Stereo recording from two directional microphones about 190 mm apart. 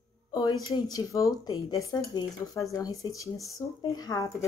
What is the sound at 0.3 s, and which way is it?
A woman's voice, 20° left (ahead or behind).